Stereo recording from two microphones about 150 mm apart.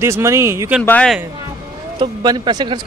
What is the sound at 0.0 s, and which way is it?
Speech, 20° right (ahead or behind).